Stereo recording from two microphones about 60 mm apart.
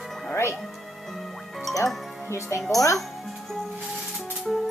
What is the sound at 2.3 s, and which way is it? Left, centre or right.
Speech, left.